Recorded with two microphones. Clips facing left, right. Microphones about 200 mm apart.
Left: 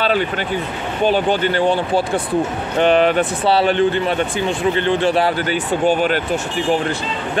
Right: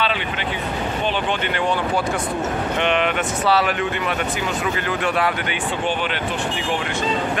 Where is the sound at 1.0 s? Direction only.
40° left (ahead or behind).